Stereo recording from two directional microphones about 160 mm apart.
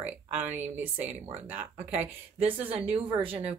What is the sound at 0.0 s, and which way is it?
Speech, 10° right (ahead or behind).